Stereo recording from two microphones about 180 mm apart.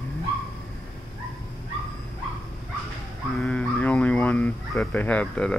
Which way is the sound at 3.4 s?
5° left (ahead or behind).